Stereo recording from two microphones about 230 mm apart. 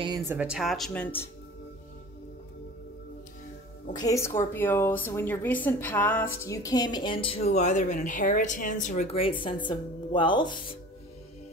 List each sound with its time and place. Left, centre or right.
0.0 s speech: centre
0.4 s speech: centre
4.0 s a woman's voice: centre